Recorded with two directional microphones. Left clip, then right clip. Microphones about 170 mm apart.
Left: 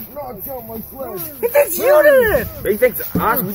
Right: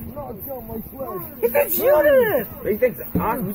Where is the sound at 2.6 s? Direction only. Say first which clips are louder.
Left 5 dB; 20° left (ahead or behind).